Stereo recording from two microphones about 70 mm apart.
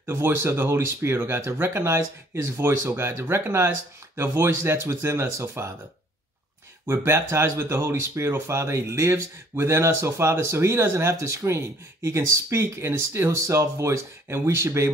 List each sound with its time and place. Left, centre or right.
0.0 s speech: right
6.9 s speech: right